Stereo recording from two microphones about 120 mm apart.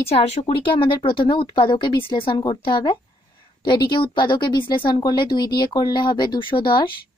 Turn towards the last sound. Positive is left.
turn(degrees=45)  # may be behind; listen again after turning